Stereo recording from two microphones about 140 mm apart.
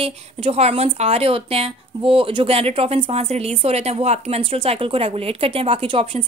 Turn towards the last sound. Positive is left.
turn(degrees=-40)  # may be behind; listen again after turning